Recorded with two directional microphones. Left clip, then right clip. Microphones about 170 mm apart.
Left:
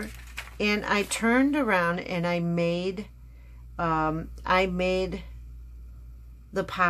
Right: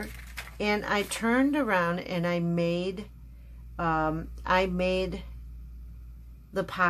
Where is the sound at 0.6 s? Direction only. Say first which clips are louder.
Left 2 dB; 20° left (ahead or behind).